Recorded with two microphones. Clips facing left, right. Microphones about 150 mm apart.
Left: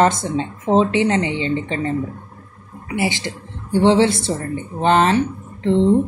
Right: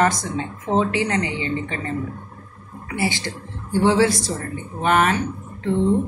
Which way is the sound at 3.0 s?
20° left (ahead or behind).